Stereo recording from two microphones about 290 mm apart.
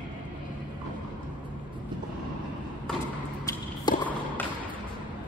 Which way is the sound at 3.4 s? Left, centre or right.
Centre.